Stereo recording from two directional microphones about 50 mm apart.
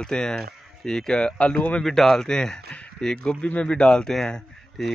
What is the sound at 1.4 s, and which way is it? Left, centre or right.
Speech, left.